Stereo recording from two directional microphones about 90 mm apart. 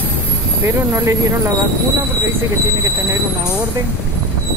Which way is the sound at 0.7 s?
30° right (ahead or behind).